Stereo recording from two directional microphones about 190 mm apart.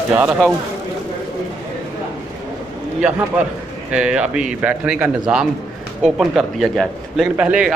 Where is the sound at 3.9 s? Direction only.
5° right (ahead or behind).